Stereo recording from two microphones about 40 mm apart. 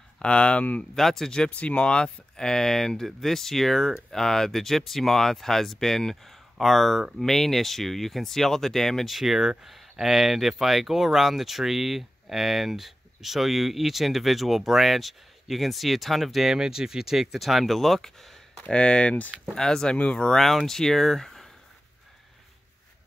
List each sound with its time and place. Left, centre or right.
0.2 s speech: left
0.9 s speech: centre
1.5 s speech: left; by 9.1 s centre
9.1 s speech: centre
18.7 s speech: left
20.3 s speech: centre